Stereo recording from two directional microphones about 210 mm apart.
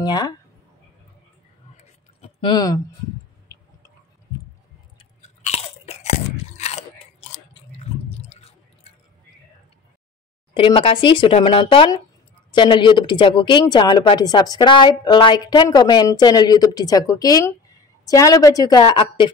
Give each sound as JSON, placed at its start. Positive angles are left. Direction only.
{"t": 0.0, "sound": "speech", "side_deg": 20}
{"t": 2.2, "sound": "speech", "side_deg": 20}
{"t": 4.9, "sound": "chewing", "side_deg": 30}
{"t": 10.5, "sound": "a woman's voice", "side_deg": 25}